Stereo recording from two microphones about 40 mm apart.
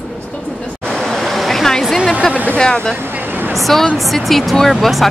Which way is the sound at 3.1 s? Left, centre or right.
Right.